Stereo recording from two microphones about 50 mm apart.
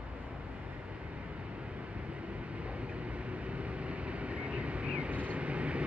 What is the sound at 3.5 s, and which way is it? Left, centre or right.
Vehicle, right.